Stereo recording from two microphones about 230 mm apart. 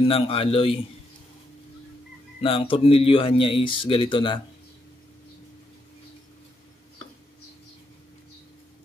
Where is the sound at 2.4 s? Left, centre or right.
Left.